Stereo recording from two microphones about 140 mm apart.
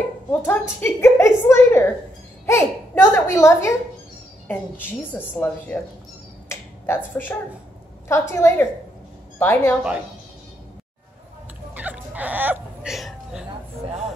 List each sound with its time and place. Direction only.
0.3 s a woman's voice: 15° left (ahead or behind)
6.5 s finger snapping: 15° left (ahead or behind)
8.1 s a child's voice: 20° left (ahead or behind)
11.7 s a sound: 10° right (ahead or behind)